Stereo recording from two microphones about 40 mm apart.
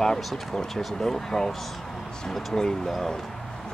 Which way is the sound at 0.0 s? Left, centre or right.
Centre.